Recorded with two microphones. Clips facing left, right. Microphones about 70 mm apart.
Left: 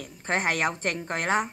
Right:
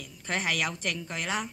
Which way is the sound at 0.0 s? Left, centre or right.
Left.